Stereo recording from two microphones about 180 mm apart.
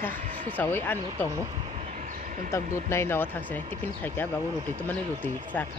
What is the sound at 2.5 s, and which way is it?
Speech, 15° left (ahead or behind).